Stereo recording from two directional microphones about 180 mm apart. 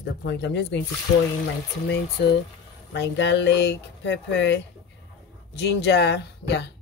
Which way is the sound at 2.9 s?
75° left (ahead or behind).